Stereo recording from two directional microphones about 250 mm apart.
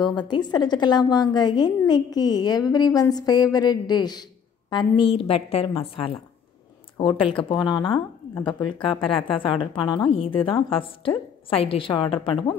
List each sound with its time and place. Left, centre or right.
0.0 s a woman's voice: centre
7.0 s a woman's voice: left